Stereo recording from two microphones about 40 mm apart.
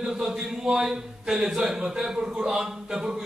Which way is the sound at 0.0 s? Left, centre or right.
Centre.